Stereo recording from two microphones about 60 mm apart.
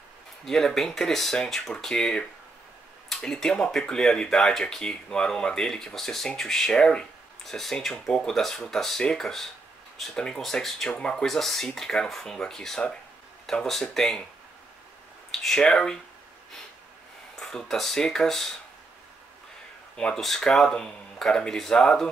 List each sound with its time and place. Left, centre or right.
0.5 s speech: centre
11.2 s speech: centre
15.4 s speech: centre
17.4 s speech: centre
20.2 s speech: centre